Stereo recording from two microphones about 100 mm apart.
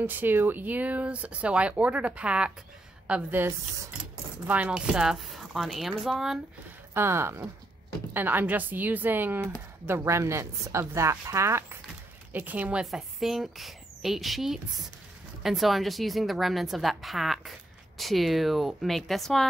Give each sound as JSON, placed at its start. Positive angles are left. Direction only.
{"t": 0.0, "sound": "a woman's voice", "side_deg": -20}
{"t": 6.9, "sound": "a woman's voice", "side_deg": -25}
{"t": 12.3, "sound": "speech", "side_deg": -15}
{"t": 12.8, "sound": "a woman's voice", "side_deg": -5}